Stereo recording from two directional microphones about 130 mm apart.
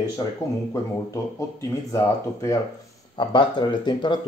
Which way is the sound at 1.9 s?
25° left (ahead or behind).